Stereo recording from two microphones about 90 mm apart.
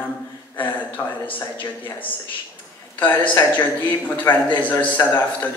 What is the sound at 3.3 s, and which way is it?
A man's voice, 20° left (ahead or behind).